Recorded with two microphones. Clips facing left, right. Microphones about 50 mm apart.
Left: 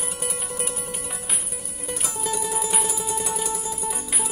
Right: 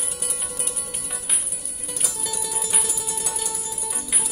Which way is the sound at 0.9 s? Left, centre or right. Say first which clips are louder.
Left 3 dB; centre.